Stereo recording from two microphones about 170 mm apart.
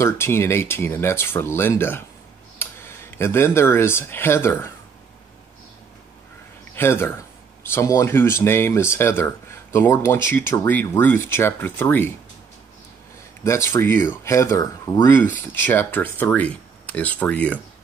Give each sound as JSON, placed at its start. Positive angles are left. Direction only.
{"t": 0.0, "sound": "speech", "side_deg": 15}
{"t": 6.7, "sound": "speech", "side_deg": 15}
{"t": 13.4, "sound": "speech", "side_deg": 15}